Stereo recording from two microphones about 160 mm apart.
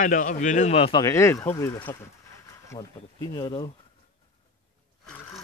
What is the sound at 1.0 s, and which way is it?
Speech, 15° left (ahead or behind).